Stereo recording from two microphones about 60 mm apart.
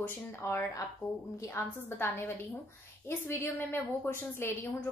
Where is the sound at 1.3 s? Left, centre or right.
Left.